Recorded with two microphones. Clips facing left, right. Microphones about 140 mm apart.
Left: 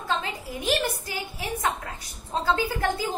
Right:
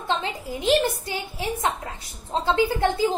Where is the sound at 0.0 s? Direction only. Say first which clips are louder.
Right 2 dB; 25° right (ahead or behind).